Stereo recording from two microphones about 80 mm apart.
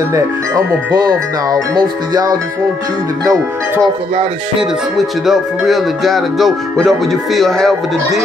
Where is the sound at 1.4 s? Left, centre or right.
Right.